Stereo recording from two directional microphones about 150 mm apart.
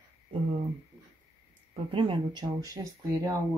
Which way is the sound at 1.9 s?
35° right (ahead or behind).